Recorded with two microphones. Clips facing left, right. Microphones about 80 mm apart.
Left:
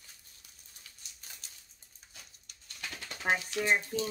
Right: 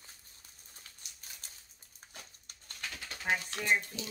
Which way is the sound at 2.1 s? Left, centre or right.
Right.